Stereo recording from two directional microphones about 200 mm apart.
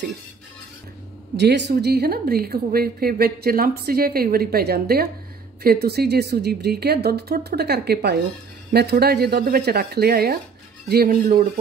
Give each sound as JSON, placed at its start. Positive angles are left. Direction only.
{"t": 1.4, "sound": "a woman's voice", "side_deg": -60}